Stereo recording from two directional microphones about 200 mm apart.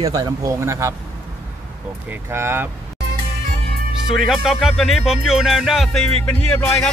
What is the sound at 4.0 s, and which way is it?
Music, centre (ahead or behind).